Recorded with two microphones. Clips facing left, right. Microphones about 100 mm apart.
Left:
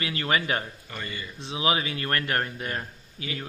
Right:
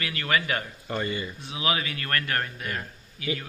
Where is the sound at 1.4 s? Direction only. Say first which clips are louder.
Left 5 dB; 25° left (ahead or behind).